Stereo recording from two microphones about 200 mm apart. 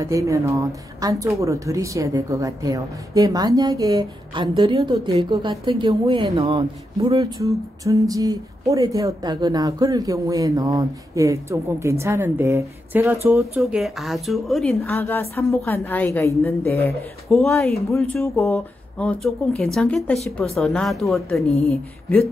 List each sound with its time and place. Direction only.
0.0 s a woman's voice: 15° right (ahead or behind); by 21.5 s centre (ahead or behind)